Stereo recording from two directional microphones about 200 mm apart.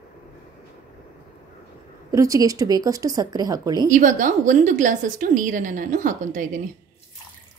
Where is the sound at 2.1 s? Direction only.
15° right (ahead or behind).